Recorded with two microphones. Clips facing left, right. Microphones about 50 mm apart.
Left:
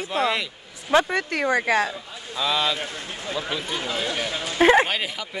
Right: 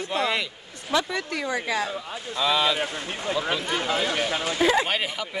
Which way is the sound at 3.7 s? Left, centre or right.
Right.